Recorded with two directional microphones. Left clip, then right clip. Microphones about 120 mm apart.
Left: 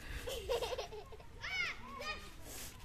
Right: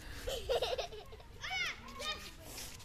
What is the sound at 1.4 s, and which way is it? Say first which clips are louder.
Children playing: right 1 dB; 30° right (ahead or behind).